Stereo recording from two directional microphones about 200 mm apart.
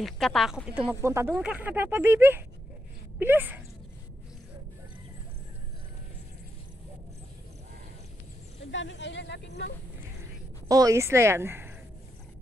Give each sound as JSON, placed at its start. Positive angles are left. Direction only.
{"t": 0.0, "sound": "speech", "side_deg": 0}
{"t": 8.7, "sound": "speech", "side_deg": 65}
{"t": 10.7, "sound": "speech", "side_deg": -15}